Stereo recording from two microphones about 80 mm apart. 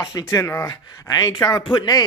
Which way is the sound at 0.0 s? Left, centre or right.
Left.